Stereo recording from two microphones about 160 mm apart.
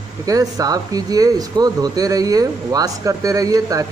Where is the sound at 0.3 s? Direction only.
20° right (ahead or behind).